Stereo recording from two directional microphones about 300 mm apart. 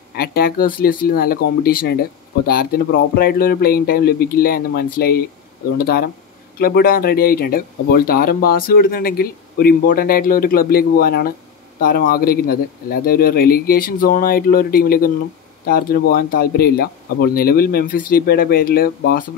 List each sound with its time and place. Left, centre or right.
0.1 s speech: left